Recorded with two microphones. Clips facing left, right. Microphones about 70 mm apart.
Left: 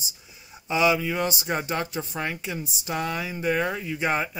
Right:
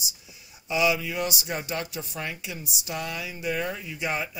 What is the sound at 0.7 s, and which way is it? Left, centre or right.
Speech, left.